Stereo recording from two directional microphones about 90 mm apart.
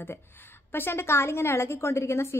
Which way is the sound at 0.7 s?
25° left (ahead or behind).